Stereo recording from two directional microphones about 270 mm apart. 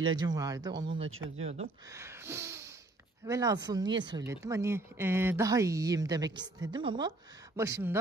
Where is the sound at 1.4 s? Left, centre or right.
Right.